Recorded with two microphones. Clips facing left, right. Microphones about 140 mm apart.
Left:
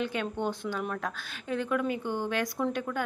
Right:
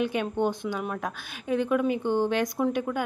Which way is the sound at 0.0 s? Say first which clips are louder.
Right 5 dB; 15° right (ahead or behind).